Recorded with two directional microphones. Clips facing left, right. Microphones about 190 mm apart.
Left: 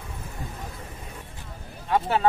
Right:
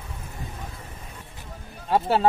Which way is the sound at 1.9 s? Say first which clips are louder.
Right 2 dB; 35° right (ahead or behind).